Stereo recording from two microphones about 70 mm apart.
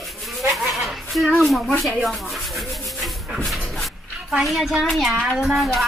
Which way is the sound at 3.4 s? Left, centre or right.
Centre.